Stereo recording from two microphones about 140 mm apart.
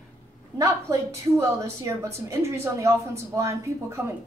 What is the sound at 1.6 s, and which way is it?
A woman's voice, 20° right (ahead or behind).